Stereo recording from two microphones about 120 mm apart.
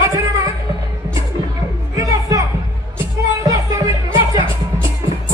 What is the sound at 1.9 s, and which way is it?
Music, 30° right (ahead or behind).